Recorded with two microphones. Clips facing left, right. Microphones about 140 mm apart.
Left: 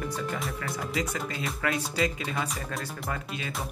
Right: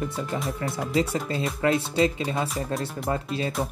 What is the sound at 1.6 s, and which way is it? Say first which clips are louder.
Speech: right 6 dB; 30° right (ahead or behind).